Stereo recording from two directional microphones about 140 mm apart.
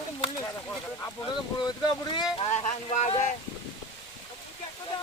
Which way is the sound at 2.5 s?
55° left (ahead or behind).